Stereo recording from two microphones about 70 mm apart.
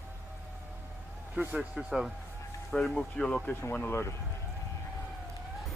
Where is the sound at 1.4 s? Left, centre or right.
Centre.